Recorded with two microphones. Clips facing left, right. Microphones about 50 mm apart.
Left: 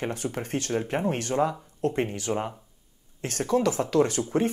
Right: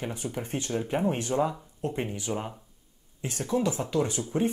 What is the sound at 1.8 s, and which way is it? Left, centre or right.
Speech, left.